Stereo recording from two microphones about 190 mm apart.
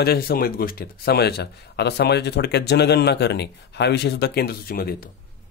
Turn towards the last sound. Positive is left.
turn(degrees=50)  # may be behind; listen again after turning